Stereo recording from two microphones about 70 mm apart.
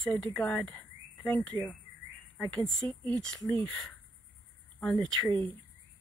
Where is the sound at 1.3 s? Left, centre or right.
Centre.